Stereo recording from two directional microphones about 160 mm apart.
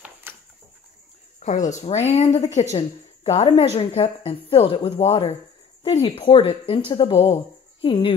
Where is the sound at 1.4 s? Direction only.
50° left (ahead or behind).